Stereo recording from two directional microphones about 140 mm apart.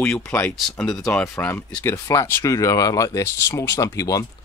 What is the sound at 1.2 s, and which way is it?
Speech, 20° left (ahead or behind).